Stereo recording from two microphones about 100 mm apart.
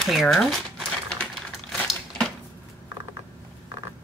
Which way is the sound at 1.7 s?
Centre (ahead or behind).